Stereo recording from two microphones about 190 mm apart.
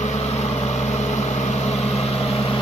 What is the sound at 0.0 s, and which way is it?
Vehicle, 35° left (ahead or behind).